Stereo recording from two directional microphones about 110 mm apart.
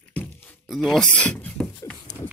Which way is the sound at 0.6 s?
Centre (ahead or behind).